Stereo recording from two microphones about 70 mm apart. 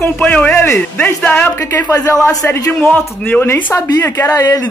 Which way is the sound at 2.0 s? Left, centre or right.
Left.